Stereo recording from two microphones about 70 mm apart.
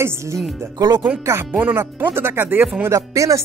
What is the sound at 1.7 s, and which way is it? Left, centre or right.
Speech, right.